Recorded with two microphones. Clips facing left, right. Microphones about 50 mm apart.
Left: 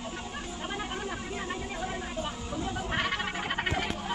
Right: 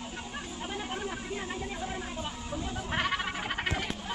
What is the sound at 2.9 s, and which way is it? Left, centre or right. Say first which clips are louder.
Music: right 1 dB; centre.